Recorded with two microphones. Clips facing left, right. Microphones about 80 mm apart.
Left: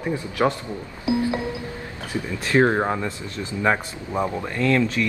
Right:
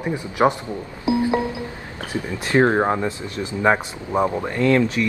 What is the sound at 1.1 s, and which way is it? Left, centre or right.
Music, right.